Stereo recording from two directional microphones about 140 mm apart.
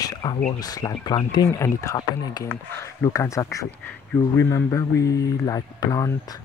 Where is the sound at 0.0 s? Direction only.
30° left (ahead or behind).